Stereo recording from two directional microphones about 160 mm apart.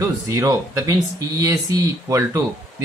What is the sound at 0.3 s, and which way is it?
Speech, 20° right (ahead or behind).